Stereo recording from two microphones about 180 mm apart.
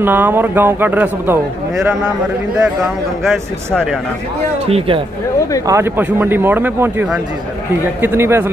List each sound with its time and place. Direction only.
0.0 s a man's voice: 10° right (ahead or behind)
3.3 s speech: centre (ahead or behind)
4.6 s speech: 30° right (ahead or behind)
5.7 s a man's voice: 15° right (ahead or behind)